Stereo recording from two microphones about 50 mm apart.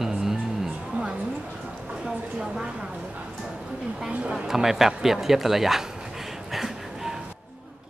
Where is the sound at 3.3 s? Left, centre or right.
Centre.